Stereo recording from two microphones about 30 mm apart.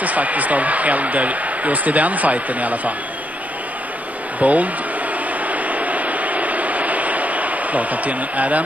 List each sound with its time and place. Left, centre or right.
0.0 s speech: right
4.4 s speech: right
5.5 s a sound: right